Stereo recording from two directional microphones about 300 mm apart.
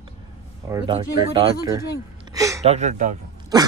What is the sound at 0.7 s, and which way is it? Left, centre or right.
Speech, centre.